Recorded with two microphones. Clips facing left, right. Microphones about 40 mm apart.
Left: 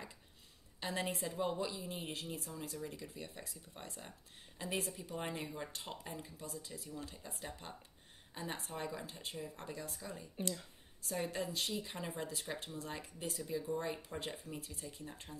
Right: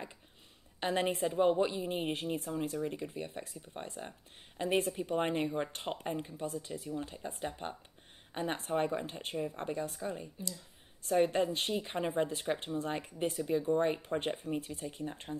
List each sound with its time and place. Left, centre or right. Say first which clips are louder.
0.7 s speech: right 8 dB; right